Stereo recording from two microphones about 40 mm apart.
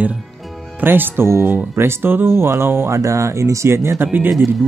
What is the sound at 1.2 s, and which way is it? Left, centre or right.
Speech, right.